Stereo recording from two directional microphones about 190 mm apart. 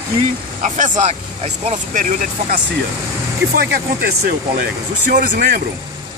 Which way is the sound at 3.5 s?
55° right (ahead or behind).